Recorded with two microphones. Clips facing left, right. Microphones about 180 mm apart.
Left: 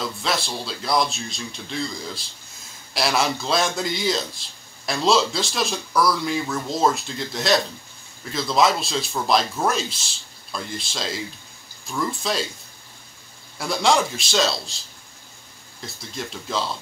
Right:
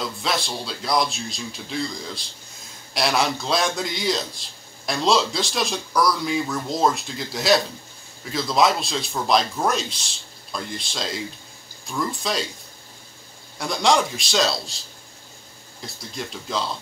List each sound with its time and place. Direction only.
0.0 s a man's voice: centre (ahead or behind)
13.6 s a man's voice: centre (ahead or behind)
15.8 s a man's voice: centre (ahead or behind)